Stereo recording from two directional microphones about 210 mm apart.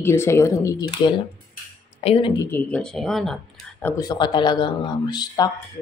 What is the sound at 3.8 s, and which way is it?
A woman's voice, 15° left (ahead or behind).